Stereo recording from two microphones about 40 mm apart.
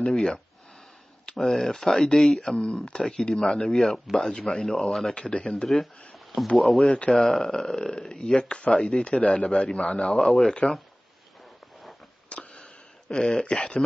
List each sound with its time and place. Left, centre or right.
0.0 s a man's voice: centre
2.5 s a man's voice: centre
5.1 s speech: left
5.7 s speech: centre
7.1 s speech: centre
12.3 s a sound: left
13.3 s speech: left